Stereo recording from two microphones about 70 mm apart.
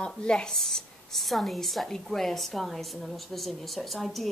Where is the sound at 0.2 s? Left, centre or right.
Centre.